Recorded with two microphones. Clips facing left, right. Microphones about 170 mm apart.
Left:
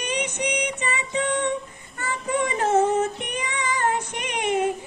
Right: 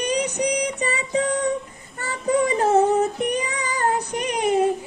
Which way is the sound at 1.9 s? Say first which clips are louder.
Right 4 dB; 35° right (ahead or behind).